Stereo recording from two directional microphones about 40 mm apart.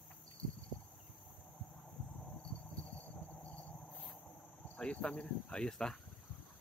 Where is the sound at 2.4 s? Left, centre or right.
Left.